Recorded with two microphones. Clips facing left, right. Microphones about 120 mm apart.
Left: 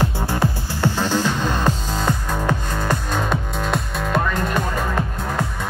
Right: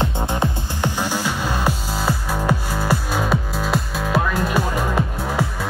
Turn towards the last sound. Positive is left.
turn(degrees=-10)  # may be behind; listen again after turning